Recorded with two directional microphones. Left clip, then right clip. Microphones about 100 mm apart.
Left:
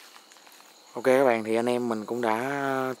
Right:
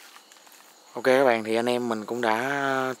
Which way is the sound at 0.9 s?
Centre (ahead or behind).